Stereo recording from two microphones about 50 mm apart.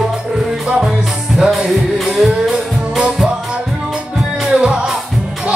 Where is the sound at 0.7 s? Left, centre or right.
Centre.